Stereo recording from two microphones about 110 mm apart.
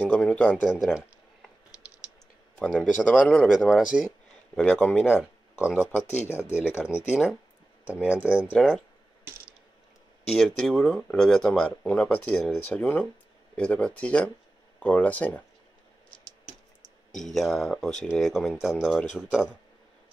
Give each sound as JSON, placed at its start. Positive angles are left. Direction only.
{"t": 0.2, "sound": "a sound", "side_deg": 10}
{"t": 0.7, "sound": "speech", "side_deg": -5}
{"t": 2.6, "sound": "speech", "side_deg": 5}
{"t": 4.6, "sound": "speech", "side_deg": 10}
{"t": 7.8, "sound": "speech", "side_deg": -15}
{"t": 8.5, "sound": "speech", "side_deg": 5}
{"t": 10.2, "sound": "speech", "side_deg": 5}
{"t": 17.1, "sound": "speech", "side_deg": 5}